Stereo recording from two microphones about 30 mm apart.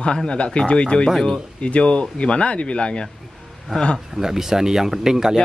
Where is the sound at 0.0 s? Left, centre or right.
Left.